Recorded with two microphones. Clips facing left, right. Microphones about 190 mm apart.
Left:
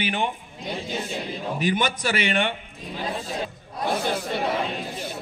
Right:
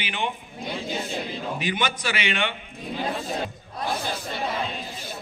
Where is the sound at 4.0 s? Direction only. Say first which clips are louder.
Left 5 dB; 60° left (ahead or behind).